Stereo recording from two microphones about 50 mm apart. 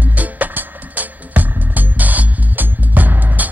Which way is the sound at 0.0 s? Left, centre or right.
Right.